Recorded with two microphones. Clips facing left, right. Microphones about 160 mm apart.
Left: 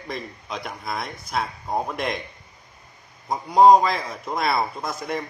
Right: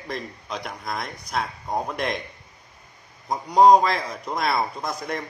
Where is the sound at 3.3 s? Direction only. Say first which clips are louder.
Left 1 dB; centre (ahead or behind).